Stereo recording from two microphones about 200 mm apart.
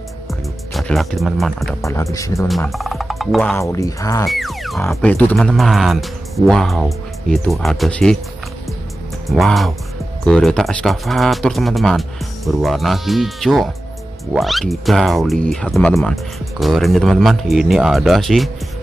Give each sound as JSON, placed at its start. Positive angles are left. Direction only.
{"t": 0.3, "sound": "music", "side_deg": 0}
{"t": 1.8, "sound": "speech", "side_deg": 15}
{"t": 2.7, "sound": "speech", "side_deg": 0}
{"t": 3.5, "sound": "speech", "side_deg": 15}
{"t": 4.3, "sound": "speech", "side_deg": 0}
{"t": 9.3, "sound": "speech", "side_deg": 0}